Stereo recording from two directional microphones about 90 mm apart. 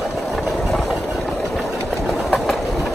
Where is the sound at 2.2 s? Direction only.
5° left (ahead or behind).